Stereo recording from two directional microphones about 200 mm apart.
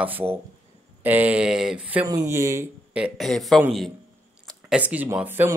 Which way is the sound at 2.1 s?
15° right (ahead or behind).